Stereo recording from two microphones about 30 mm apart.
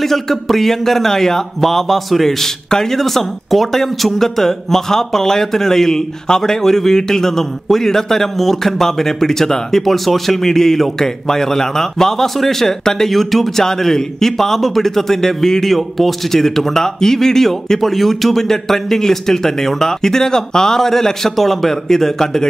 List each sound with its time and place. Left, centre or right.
0.0 s speech: centre
2.7 s speech: centre
3.0 s speech: centre
13.7 s speech: centre